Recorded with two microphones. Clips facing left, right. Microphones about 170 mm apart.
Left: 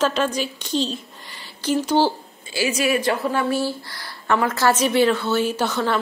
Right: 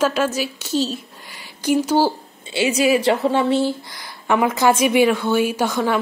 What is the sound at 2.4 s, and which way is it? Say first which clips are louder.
A woman's voice: right 4 dB; 25° right (ahead or behind).